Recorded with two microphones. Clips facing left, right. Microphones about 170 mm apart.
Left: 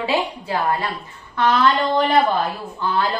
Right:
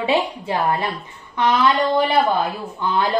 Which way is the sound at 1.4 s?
10° right (ahead or behind).